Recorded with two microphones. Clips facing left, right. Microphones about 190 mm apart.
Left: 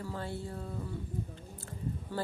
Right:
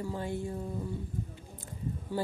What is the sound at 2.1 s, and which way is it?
Speech, 10° right (ahead or behind).